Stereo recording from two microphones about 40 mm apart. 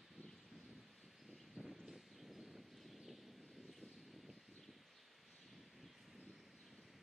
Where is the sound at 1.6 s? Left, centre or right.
Right.